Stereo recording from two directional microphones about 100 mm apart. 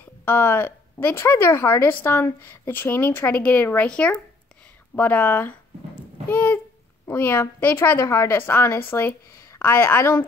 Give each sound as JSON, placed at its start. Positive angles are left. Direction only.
{"t": 0.2, "sound": "a woman's voice", "side_deg": 20}